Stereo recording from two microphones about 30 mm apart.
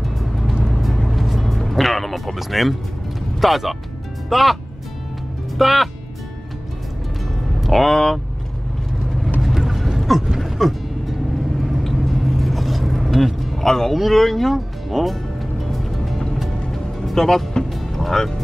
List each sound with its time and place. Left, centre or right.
0.0 s music: centre
3.3 s speech: centre
5.6 s speech: centre
7.6 s speech: centre
7.9 s speech: centre
9.4 s a sound: centre
10.4 s vehicle: centre
13.4 s a sound: centre
14.1 s speech: centre
15.6 s music: centre